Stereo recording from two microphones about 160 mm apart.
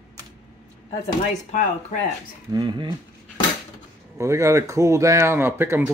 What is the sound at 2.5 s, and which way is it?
Speech, 25° right (ahead or behind).